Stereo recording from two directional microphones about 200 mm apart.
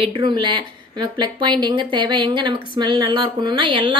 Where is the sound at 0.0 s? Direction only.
25° right (ahead or behind).